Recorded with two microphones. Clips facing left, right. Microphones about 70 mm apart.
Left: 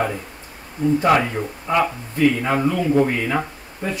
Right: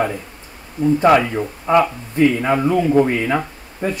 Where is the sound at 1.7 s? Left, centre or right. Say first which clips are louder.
Right 5 dB; right.